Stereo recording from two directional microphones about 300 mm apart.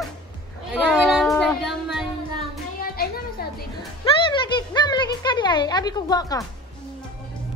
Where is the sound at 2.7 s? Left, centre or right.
Left.